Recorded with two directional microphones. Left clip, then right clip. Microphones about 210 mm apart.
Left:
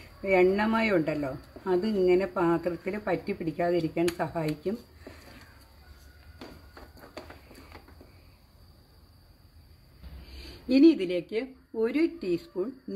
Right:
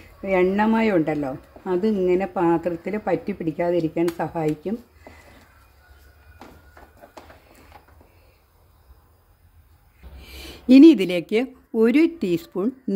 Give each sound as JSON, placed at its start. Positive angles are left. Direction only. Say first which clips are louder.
{"t": 0.2, "sound": "speech", "louder": "right 3 dB", "side_deg": -30}
{"t": 10.3, "sound": "speech", "louder": "right 11 dB", "side_deg": -55}